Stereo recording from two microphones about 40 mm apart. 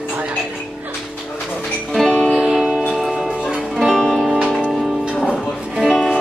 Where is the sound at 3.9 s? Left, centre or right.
Centre.